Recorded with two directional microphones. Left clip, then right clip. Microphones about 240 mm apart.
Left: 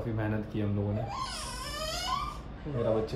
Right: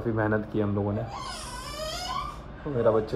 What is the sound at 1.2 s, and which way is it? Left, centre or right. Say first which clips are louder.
Baby cry: even; centre.